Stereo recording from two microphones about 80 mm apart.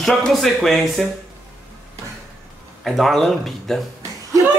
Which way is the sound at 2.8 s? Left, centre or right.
Centre.